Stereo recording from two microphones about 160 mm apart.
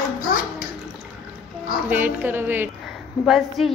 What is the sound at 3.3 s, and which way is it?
Speech, centre (ahead or behind).